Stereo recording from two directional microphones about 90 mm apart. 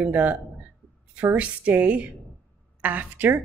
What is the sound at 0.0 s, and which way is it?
A woman's voice, 20° right (ahead or behind).